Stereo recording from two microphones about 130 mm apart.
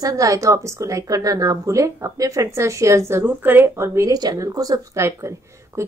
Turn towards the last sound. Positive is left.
turn(degrees=-20)  # may be behind; listen again after turning